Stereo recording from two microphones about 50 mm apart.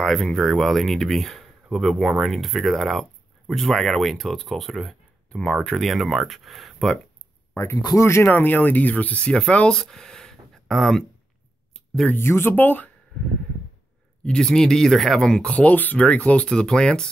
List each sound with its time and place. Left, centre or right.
0.0 s speech: centre
5.3 s speech: centre
7.5 s speech: left
8.3 s speech: left
9.8 s a sound: centre
11.7 s a sound: centre
12.2 s speech: left
12.4 s speech: left
14.2 s speech: centre
15.5 s speech: left
16.4 s speech: centre